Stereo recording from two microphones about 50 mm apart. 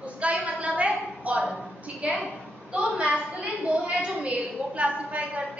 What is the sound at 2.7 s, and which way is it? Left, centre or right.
A woman's voice, right.